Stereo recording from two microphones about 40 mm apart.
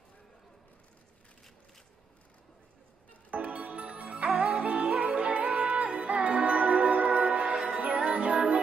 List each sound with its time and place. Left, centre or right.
3.3 s music: right
7.5 s music: centre